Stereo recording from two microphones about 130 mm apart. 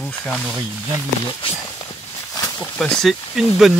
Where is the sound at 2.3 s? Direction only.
25° left (ahead or behind).